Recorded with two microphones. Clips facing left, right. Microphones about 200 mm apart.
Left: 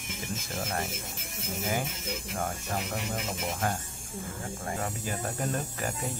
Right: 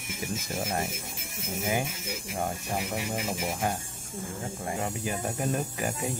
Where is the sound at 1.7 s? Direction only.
15° right (ahead or behind).